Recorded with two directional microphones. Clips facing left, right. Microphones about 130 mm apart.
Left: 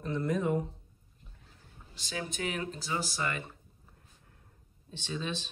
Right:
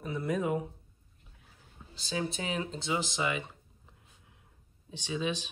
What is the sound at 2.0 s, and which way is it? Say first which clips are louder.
Speech: right 3 dB; 30° right (ahead or behind).